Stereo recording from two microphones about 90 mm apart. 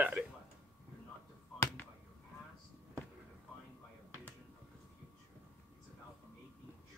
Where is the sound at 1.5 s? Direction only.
30° left (ahead or behind).